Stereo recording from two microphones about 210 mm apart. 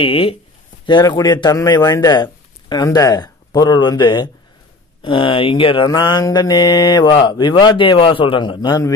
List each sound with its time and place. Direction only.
0.0 s mantra: 25° left (ahead or behind)